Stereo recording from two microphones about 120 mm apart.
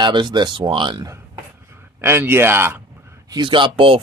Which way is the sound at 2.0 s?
20° right (ahead or behind).